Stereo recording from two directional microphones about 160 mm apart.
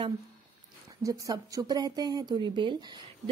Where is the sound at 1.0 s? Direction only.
20° right (ahead or behind).